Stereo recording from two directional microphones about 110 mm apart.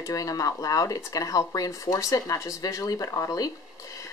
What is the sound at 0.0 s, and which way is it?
Speech, 30° left (ahead or behind).